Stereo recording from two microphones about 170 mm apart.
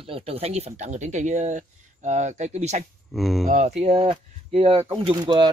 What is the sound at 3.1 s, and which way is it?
Speech, centre (ahead or behind).